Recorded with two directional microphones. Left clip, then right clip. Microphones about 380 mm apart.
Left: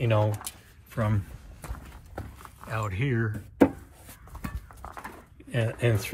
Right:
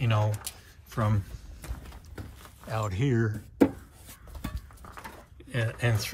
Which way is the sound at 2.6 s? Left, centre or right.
Centre.